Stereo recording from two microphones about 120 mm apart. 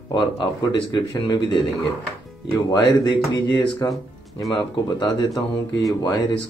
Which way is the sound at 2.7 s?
35° left (ahead or behind).